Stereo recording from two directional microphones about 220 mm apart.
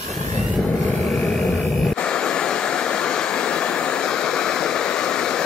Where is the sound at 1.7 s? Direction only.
Centre (ahead or behind).